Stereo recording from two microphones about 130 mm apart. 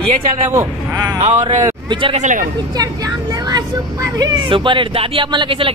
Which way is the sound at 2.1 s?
70° right (ahead or behind).